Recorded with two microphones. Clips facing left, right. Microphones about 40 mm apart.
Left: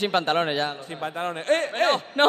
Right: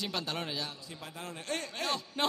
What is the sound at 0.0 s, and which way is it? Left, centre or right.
A man's voice, left.